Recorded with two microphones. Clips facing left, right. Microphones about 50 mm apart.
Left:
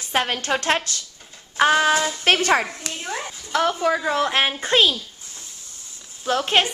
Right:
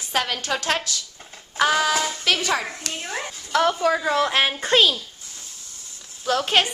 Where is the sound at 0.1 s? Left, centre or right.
Left.